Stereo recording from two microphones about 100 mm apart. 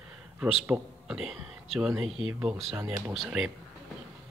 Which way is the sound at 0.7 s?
5° right (ahead or behind).